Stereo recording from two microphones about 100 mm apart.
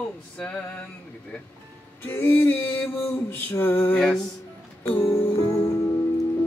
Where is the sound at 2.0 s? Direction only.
20° left (ahead or behind).